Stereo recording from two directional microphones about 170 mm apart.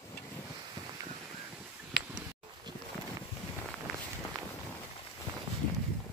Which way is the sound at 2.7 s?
25° right (ahead or behind).